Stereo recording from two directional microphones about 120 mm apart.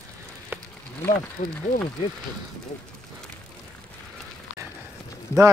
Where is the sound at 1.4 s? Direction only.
65° left (ahead or behind).